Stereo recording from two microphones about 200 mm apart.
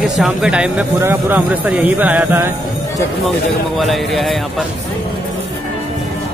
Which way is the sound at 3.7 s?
Centre (ahead or behind).